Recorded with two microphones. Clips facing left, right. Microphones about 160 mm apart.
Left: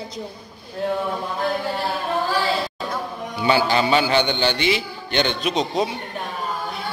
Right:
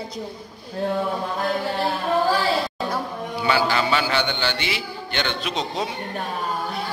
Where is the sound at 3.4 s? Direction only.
20° left (ahead or behind).